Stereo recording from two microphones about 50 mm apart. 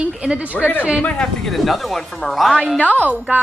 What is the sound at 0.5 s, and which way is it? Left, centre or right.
Speech, left.